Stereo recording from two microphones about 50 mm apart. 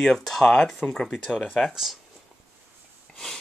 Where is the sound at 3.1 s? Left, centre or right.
Centre.